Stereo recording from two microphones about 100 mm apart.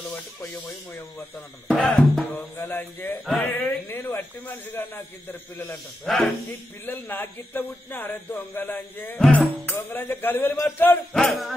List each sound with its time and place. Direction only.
1.7 s speech: 10° left (ahead or behind)
6.0 s music: 5° left (ahead or behind)
6.9 s speech: 20° left (ahead or behind)
11.1 s music: centre (ahead or behind)